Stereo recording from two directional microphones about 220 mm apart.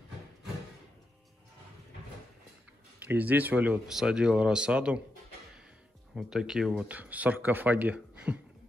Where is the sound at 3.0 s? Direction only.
10° right (ahead or behind).